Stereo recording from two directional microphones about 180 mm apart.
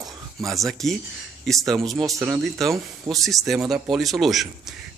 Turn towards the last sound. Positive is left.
turn(degrees=0)  # may be behind; listen again after turning